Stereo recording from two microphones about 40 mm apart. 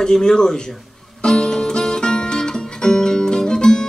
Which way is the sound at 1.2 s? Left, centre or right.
Centre.